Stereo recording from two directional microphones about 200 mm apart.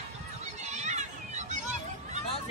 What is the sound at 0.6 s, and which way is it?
Children playing, 35° right (ahead or behind).